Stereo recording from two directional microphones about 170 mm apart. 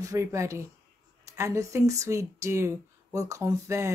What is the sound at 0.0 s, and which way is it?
Speech, 20° right (ahead or behind).